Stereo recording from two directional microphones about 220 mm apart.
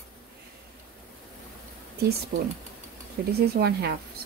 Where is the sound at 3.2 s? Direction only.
45° right (ahead or behind).